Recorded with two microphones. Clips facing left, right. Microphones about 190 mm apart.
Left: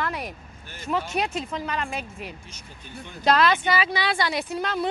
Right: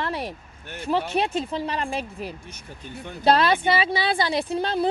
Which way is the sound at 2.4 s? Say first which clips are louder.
Right 5 dB; 60° right (ahead or behind).